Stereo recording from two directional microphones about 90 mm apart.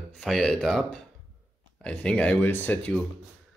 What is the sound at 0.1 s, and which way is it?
Speech, 5° left (ahead or behind).